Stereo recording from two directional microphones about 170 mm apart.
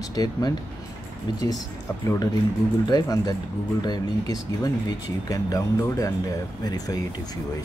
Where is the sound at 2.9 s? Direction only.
25° left (ahead or behind).